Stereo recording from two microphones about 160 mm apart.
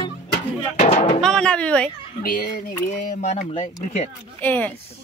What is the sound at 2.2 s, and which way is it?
Speech, 60° left (ahead or behind).